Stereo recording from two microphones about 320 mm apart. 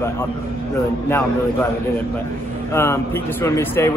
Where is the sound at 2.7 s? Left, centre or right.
Centre.